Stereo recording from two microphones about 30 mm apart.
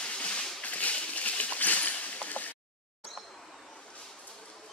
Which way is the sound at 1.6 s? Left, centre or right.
Left.